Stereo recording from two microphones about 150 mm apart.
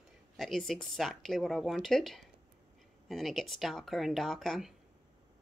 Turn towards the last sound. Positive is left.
turn(degrees=0)  # may be behind; listen again after turning